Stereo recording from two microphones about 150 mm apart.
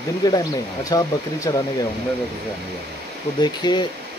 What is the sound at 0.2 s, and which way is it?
Speech, 25° left (ahead or behind).